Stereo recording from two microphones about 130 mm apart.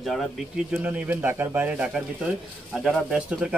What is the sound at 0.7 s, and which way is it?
A man's voice, 10° right (ahead or behind).